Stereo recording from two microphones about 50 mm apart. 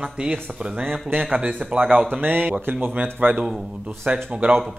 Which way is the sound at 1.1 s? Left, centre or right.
Right.